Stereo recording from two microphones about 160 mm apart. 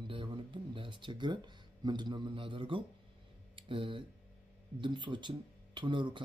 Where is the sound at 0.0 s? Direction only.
30° right (ahead or behind).